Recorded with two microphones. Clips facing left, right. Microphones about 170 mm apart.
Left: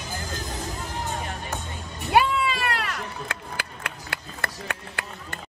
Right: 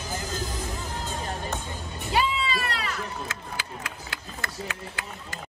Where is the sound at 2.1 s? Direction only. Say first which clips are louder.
Left 5 dB; 60° left (ahead or behind).